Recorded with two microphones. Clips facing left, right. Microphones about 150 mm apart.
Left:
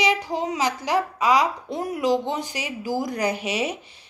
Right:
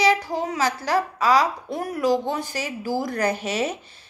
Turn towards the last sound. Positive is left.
turn(degrees=15)  # may be behind; listen again after turning